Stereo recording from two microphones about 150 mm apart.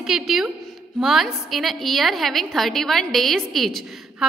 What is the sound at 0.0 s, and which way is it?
A woman's voice, centre (ahead or behind).